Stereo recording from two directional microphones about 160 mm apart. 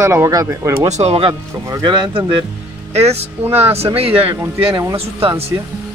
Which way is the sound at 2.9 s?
40° right (ahead or behind).